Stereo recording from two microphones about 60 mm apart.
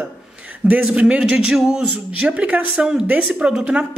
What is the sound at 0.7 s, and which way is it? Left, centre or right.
Speech, right.